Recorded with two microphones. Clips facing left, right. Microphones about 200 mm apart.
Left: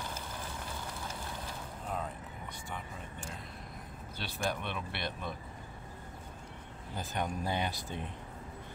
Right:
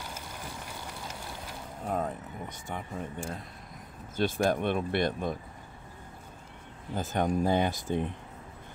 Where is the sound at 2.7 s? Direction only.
50° right (ahead or behind).